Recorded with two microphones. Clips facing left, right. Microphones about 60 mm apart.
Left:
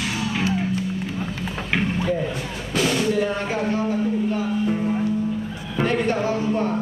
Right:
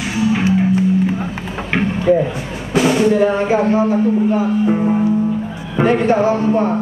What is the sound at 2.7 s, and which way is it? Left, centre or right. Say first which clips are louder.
Speech: right 8 dB; centre.